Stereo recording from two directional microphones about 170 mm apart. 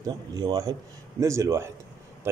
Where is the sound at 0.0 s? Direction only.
20° right (ahead or behind).